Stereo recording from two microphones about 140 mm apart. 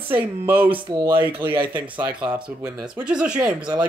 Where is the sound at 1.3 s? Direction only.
15° right (ahead or behind).